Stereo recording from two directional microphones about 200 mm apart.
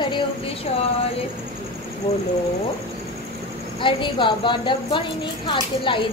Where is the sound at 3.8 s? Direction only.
25° left (ahead or behind).